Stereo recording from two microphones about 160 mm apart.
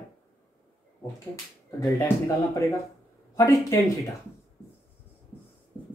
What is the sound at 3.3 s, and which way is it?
Speech, 20° left (ahead or behind).